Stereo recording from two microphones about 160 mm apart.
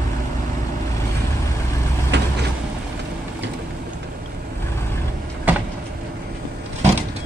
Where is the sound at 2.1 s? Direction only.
90° right.